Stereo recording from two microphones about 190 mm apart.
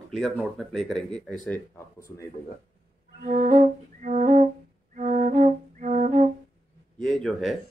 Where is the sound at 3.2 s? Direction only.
45° right (ahead or behind).